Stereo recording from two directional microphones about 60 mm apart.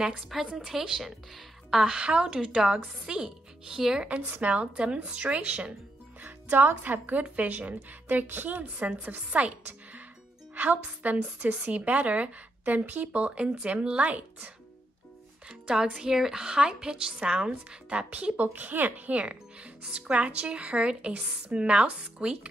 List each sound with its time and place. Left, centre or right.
0.3 s a woman's voice: centre
4.2 s a woman's voice: right
6.2 s a woman's voice: right
15.4 s a woman's voice: centre